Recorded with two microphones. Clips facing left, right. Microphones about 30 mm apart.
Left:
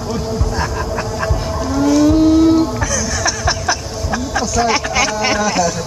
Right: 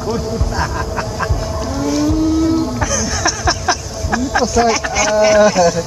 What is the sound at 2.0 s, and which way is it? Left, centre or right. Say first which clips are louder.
Vehicle: left 4 dB; left.